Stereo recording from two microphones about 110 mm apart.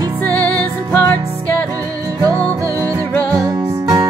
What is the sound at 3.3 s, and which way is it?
Music, 35° right (ahead or behind).